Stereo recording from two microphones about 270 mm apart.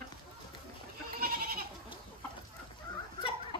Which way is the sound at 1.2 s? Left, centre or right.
Right.